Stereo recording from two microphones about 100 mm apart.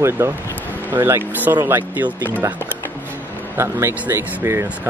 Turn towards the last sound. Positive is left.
turn(degrees=-25)  # may be behind; listen again after turning